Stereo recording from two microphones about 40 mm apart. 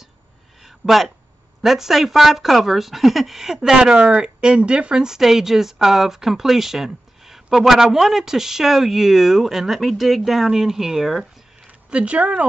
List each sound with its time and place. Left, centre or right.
0.6 s a sound: centre
1.6 s speech: centre
11.9 s speech: right